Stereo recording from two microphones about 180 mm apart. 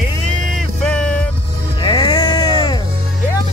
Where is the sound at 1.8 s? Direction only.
25° left (ahead or behind).